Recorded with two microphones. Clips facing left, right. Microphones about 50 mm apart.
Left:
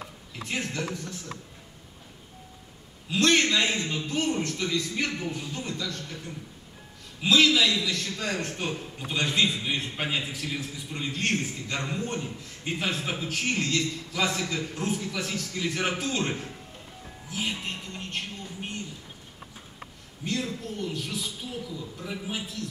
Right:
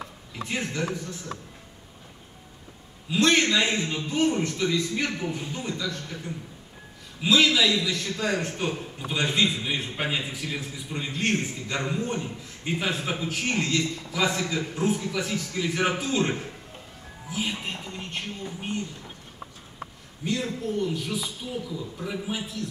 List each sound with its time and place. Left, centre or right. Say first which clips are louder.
0.3 s a man's voice: right 2 dB; centre
3.1 s a man's voice: right 1 dB; centre
20.2 s a man's voice: right 3 dB; centre